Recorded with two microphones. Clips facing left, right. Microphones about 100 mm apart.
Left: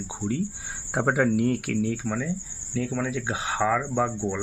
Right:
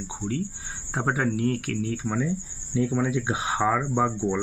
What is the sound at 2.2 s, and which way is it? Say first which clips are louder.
Speech: right 2 dB; 20° right (ahead or behind).